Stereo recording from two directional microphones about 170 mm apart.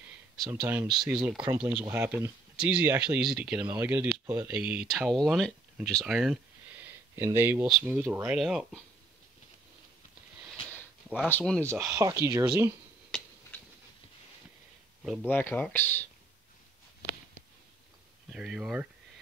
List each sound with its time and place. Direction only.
0.5 s speech: 10° right (ahead or behind)
7.2 s speech: 15° right (ahead or behind)
11.2 s speech: 10° left (ahead or behind)
11.9 s speech: 15° right (ahead or behind)
13.1 s a sound: 5° left (ahead or behind)
15.2 s speech: 10° left (ahead or behind)
18.3 s speech: 5° right (ahead or behind)